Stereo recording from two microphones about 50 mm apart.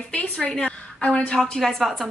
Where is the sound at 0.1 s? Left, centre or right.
Left.